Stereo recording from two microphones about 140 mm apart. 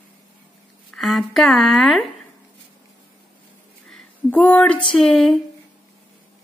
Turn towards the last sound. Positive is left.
turn(degrees=0)  # may be behind; listen again after turning